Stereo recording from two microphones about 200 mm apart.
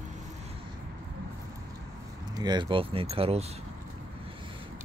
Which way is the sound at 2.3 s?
20° right (ahead or behind).